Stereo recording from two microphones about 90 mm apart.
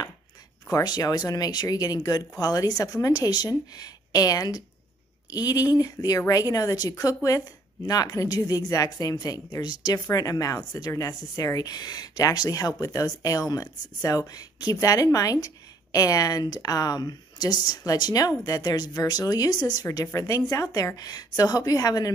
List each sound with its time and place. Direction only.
0.7 s a woman's voice: 45° left (ahead or behind)